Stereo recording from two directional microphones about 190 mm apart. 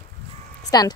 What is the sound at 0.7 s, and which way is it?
Speech, 20° left (ahead or behind).